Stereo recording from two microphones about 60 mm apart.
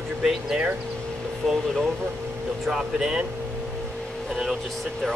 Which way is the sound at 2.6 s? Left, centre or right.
Centre.